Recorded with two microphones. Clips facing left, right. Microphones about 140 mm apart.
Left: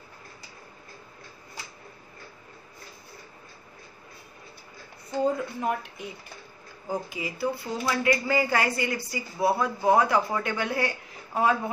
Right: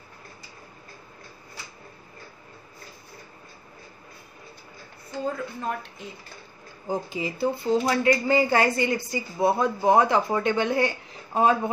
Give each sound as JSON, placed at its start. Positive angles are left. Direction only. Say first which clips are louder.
{"t": 5.6, "sound": "speech", "louder": "left 2 dB", "side_deg": 10}
{"t": 6.9, "sound": "speech", "louder": "right 3 dB", "side_deg": -25}